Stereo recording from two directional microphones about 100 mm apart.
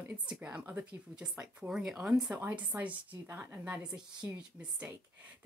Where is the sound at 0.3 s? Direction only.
10° right (ahead or behind).